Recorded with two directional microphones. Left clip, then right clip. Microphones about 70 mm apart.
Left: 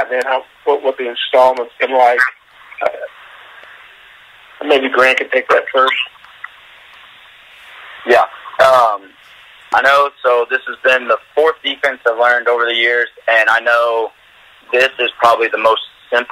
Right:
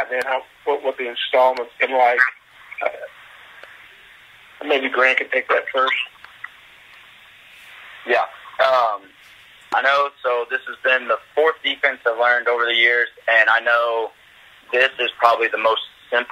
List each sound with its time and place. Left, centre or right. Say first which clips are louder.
0.3 s speech: left 6 dB; left
4.6 s speech: left 6 dB; left
7.7 s radio: left 8 dB; left
9.8 s speech: left 7 dB; left